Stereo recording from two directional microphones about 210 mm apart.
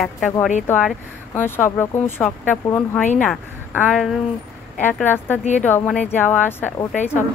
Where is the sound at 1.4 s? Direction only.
10° left (ahead or behind).